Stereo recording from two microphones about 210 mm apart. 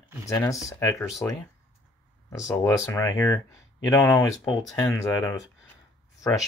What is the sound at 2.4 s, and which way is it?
Speech, 15° left (ahead or behind).